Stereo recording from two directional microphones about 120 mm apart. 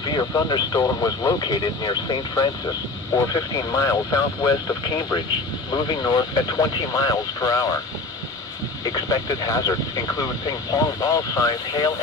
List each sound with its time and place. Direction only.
0.3 s speech: 30° left (ahead or behind)
8.8 s speech: 30° left (ahead or behind)